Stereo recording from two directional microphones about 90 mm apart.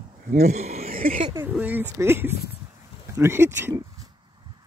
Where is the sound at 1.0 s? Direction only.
90° right.